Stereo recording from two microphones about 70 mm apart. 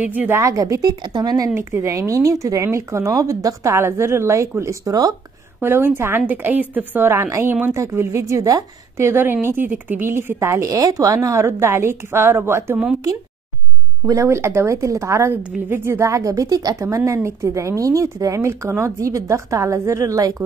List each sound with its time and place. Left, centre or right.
0.0 s a woman's voice: right
0.3 s speech: right
1.5 s a woman's voice: right
1.8 s speech: right
5.6 s a woman's voice: right
8.9 s a woman's voice: right
14.0 s speech: right
15.3 s a woman's voice: right
15.8 s speech: right
16.8 s speech: right